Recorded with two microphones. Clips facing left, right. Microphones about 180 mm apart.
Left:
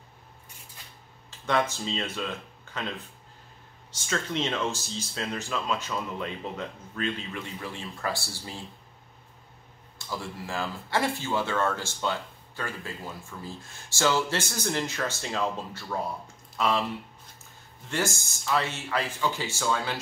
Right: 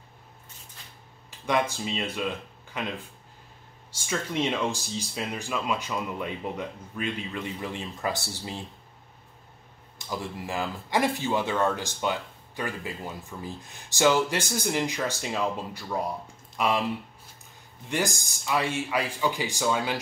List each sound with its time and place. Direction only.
1.4 s speech: 10° right (ahead or behind)
9.9 s speech: 20° right (ahead or behind)
17.8 s speech: 15° right (ahead or behind)